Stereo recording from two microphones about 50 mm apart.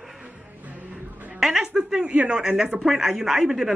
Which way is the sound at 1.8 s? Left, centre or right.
Centre.